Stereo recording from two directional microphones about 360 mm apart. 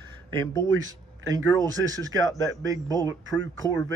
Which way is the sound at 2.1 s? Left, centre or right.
Right.